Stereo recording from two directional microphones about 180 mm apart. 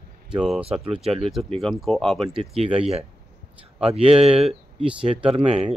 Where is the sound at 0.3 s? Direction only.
5° right (ahead or behind).